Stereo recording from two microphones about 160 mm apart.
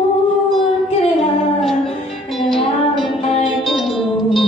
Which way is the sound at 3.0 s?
30° left (ahead or behind).